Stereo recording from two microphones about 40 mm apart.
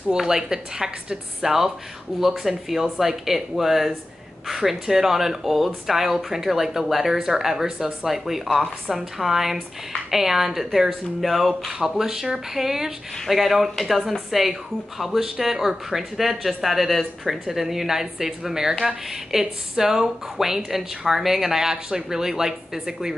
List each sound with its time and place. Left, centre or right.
0.3 s speech: centre